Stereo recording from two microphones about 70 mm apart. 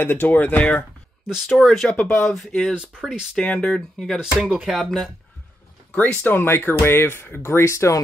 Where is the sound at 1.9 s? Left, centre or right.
Left.